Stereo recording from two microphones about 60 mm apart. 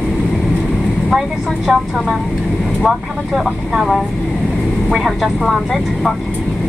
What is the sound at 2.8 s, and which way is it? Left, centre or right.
A woman's voice, centre.